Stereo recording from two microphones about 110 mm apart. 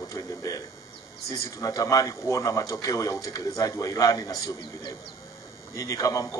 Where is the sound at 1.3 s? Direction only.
35° left (ahead or behind).